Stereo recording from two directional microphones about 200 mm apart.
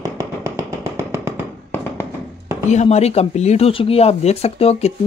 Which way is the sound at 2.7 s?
35° left (ahead or behind).